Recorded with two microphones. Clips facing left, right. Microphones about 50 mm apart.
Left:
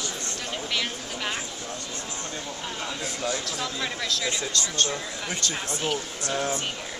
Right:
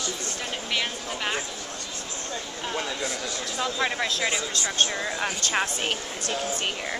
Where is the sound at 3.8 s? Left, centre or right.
Right.